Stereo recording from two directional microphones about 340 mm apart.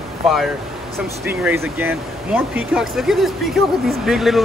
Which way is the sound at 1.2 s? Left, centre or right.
Centre.